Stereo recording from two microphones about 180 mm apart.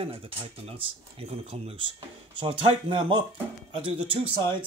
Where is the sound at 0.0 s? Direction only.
30° right (ahead or behind).